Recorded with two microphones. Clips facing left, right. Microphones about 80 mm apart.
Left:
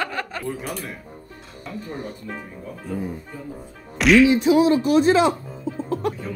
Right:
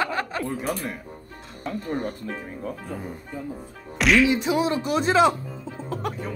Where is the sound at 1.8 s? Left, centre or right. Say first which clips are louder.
Right 5 dB; right.